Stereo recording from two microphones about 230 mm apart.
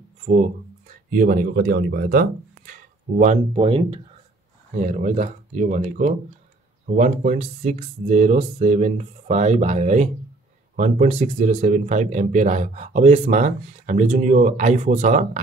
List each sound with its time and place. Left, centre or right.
0.2 s speech: right
3.5 s speech: right